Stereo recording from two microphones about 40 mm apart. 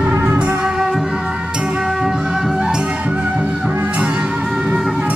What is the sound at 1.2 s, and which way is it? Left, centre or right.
Music, right.